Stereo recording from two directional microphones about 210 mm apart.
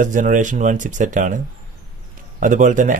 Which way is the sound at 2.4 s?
40° right (ahead or behind).